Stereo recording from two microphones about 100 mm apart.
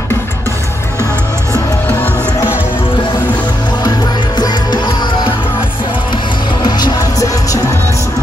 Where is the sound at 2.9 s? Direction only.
50° left (ahead or behind).